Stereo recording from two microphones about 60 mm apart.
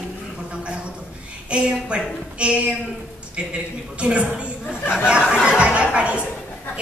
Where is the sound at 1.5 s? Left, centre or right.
Centre.